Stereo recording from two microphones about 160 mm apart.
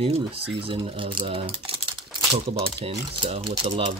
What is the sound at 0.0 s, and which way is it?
Speech, 35° right (ahead or behind).